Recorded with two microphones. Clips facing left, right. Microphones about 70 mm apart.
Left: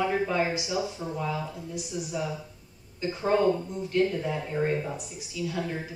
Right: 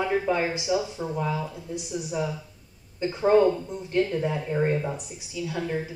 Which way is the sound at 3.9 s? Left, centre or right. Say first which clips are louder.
Right 1 dB; right.